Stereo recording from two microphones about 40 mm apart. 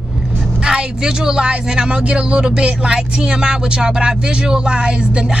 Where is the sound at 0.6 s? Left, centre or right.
Centre.